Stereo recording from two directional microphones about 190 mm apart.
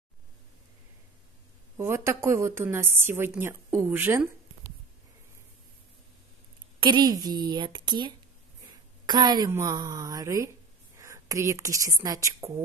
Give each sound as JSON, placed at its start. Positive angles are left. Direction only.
{"t": 1.8, "sound": "a woman's voice", "side_deg": -15}
{"t": 6.8, "sound": "a woman's voice", "side_deg": -20}